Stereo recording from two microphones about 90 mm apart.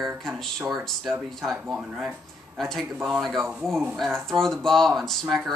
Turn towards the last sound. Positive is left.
turn(degrees=0)  # may be behind; listen again after turning